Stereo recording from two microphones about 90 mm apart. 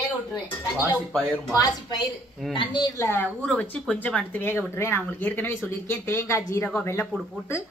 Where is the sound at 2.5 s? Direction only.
70° left (ahead or behind).